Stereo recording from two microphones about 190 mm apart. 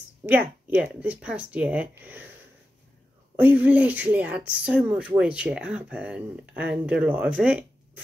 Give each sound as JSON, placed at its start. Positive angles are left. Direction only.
{"t": 0.3, "sound": "speech", "side_deg": -10}
{"t": 3.3, "sound": "speech", "side_deg": -10}